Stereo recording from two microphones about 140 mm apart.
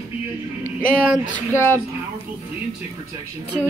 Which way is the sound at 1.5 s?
15° left (ahead or behind).